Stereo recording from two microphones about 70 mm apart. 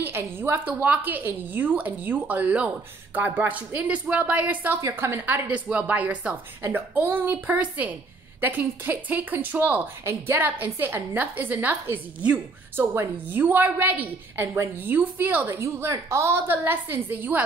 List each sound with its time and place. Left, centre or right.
0.0 s a woman's voice: right
4.9 s a woman's voice: right
10.0 s a woman's voice: right
12.7 s a woman's voice: right
14.3 s a woman's voice: right
14.9 s a woman's voice: right
15.4 s a woman's voice: right
16.4 s a woman's voice: right